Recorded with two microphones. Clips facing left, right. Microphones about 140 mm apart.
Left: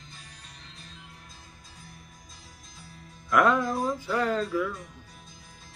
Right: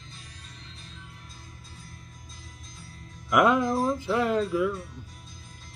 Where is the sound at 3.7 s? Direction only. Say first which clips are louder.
Right 3 dB; 20° right (ahead or behind).